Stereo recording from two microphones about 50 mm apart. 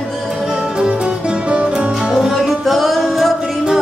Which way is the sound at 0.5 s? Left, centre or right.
Centre.